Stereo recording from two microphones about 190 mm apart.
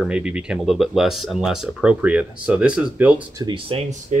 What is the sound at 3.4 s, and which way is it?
Speech, 25° right (ahead or behind).